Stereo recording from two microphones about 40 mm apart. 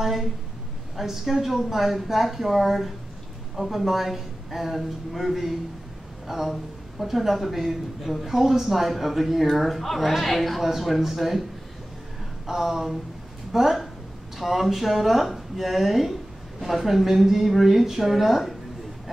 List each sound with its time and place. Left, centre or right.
0.0 s a man's voice: centre
12.4 s a man's voice: centre